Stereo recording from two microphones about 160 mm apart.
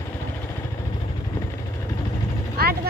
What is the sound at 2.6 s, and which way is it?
Vehicle, 75° right (ahead or behind).